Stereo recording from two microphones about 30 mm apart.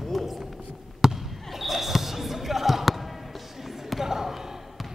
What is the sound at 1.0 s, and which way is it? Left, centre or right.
Basketball bounce, centre.